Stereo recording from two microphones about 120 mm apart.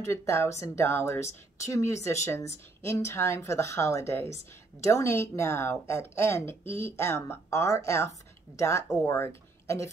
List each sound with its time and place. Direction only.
0.0 s a woman's voice: 25° left (ahead or behind)